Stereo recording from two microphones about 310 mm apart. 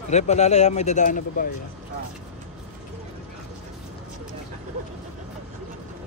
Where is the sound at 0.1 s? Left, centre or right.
Left.